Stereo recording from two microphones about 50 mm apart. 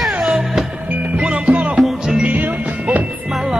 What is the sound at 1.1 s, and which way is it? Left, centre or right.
Music, right.